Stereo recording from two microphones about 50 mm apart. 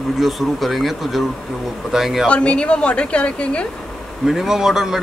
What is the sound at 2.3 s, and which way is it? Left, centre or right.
Speech, left.